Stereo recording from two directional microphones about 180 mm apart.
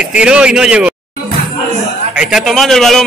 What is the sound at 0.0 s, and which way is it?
Speech, 5° right (ahead or behind).